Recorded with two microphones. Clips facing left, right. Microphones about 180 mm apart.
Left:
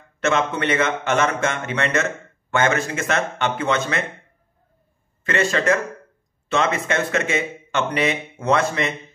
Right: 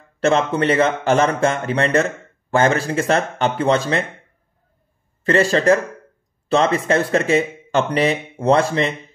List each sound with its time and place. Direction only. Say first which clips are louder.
0.2 s speech: right 4 dB; 35° right (ahead or behind)
5.2 s speech: right 5 dB; 35° right (ahead or behind)